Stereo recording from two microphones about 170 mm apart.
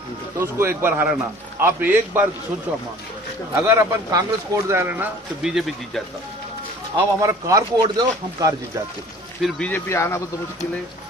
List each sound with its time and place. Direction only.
0.4 s speech: 15° right (ahead or behind)
3.5 s speech: 15° right (ahead or behind); by 6.0 s centre (ahead or behind)
7.2 s speech: 20° right (ahead or behind)
9.4 s speech: 5° left (ahead or behind)
9.8 s speech: 15° left (ahead or behind)